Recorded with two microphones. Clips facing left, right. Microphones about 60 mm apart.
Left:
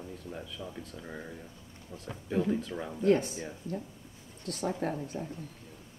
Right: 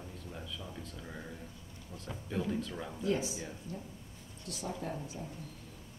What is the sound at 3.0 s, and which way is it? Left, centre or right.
Speech, left.